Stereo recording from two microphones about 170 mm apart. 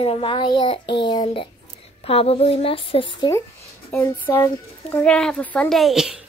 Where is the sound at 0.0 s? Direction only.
30° left (ahead or behind).